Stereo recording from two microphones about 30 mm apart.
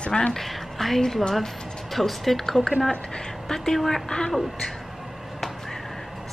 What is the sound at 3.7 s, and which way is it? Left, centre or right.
Speech, centre.